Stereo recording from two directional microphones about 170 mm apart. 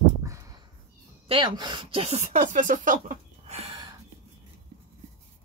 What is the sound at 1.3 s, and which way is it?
Speech, 25° right (ahead or behind).